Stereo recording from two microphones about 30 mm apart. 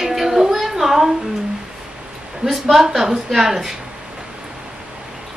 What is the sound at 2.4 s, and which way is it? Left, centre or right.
Speech, right.